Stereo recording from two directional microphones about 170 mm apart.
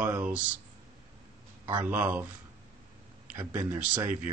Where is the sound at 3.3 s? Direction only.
10° right (ahead or behind).